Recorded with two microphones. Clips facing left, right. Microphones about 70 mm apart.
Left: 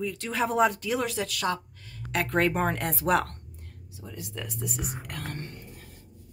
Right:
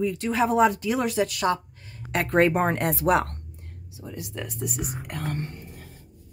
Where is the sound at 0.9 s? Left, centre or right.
Centre.